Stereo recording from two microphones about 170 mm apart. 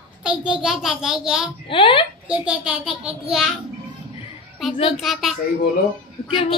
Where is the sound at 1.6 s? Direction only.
30° left (ahead or behind).